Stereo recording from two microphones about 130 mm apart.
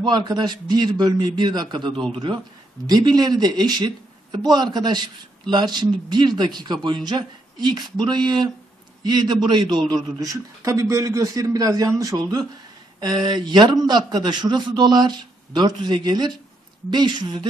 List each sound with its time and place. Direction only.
0.0 s a man's voice: 30° right (ahead or behind)